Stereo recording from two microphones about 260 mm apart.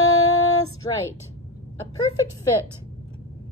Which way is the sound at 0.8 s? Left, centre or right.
Centre.